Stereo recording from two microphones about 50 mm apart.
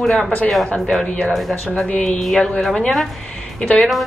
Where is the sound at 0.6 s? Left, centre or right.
Left.